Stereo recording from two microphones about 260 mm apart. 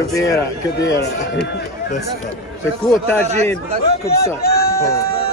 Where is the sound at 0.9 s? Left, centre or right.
Left.